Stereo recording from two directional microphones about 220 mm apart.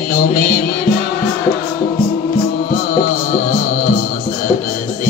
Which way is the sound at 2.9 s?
40° left (ahead or behind).